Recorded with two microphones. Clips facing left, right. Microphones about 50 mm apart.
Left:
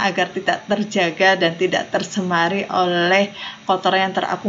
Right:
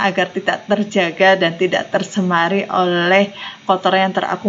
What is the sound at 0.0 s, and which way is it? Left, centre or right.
Speech, centre.